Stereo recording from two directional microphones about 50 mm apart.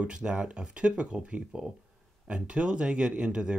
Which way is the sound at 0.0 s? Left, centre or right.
Centre.